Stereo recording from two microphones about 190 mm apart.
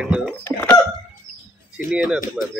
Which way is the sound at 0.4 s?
10° left (ahead or behind).